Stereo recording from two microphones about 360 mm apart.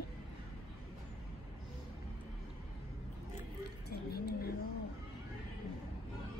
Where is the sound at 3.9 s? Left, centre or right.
Left.